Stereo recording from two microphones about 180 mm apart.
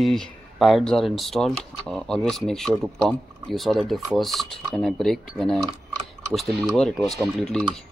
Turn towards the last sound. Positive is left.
turn(degrees=5)  # may be behind; listen again after turning